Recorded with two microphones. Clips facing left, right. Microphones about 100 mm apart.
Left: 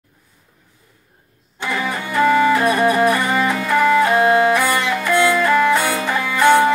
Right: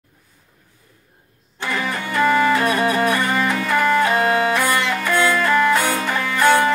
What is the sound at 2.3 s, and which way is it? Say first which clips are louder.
Music: left 2 dB; 15° left (ahead or behind).